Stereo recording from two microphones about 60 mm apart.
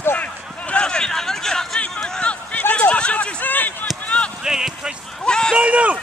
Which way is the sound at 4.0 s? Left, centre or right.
Left.